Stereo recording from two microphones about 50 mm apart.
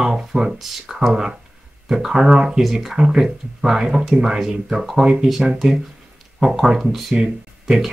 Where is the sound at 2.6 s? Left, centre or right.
Centre.